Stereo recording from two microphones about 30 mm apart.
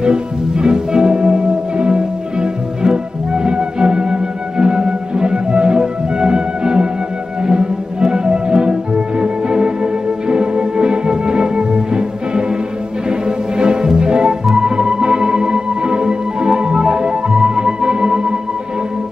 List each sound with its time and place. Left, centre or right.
0.0 s music: right
13.6 s music: right